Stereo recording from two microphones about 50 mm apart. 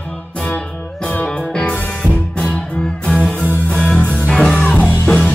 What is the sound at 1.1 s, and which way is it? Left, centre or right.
Music, left.